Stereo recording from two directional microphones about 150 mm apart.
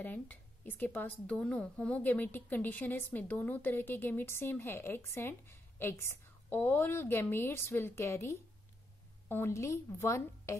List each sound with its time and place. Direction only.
0.0 s a woman's voice: 10° left (ahead or behind)